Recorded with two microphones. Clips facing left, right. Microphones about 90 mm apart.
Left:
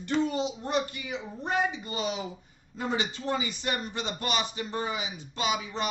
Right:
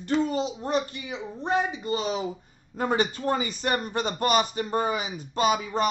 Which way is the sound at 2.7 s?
50° right (ahead or behind).